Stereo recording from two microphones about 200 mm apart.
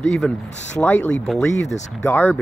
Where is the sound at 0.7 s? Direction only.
10° left (ahead or behind).